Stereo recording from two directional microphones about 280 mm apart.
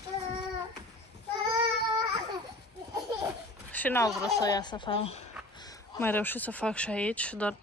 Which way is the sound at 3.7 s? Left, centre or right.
Centre.